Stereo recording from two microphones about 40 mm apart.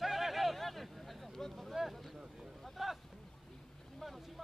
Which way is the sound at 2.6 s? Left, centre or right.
Centre.